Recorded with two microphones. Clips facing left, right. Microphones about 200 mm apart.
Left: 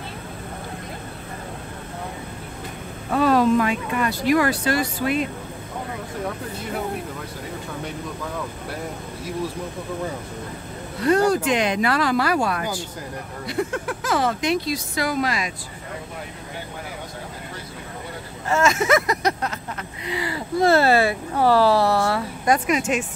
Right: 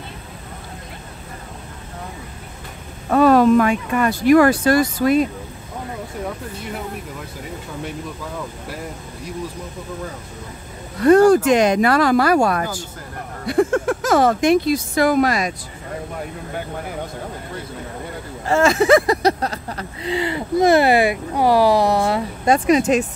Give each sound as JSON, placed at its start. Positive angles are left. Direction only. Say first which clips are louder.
{"t": 3.1, "sound": "speech", "louder": "right 5 dB", "side_deg": -55}
{"t": 11.1, "sound": "speech", "louder": "right 7 dB", "side_deg": -50}
{"t": 18.5, "sound": "a sound", "louder": "right 5 dB", "side_deg": -35}